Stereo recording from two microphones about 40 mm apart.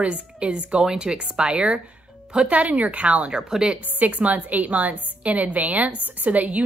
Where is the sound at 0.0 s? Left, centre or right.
Right.